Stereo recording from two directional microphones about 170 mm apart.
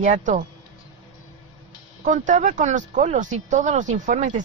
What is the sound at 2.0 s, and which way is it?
Speech, 45° right (ahead or behind).